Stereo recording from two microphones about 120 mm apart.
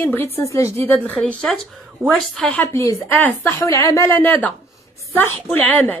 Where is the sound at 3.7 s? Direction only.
25° left (ahead or behind).